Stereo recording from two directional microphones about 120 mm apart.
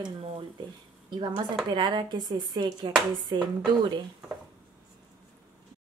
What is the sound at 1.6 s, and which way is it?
A woman's voice, 40° right (ahead or behind).